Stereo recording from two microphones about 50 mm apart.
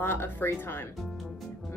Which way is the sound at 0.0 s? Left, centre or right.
Left.